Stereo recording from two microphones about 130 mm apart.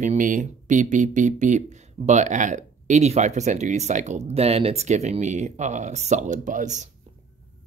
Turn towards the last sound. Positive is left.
turn(degrees=-70)  # may be behind; listen again after turning